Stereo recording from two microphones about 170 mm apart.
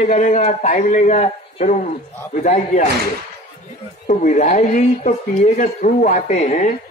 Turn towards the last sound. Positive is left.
turn(degrees=45)  # may be behind; listen again after turning